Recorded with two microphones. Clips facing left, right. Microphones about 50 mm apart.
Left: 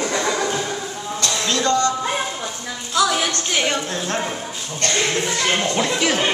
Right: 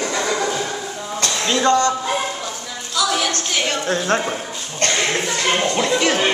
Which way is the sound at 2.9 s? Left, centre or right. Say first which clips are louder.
Left 1 dB; centre.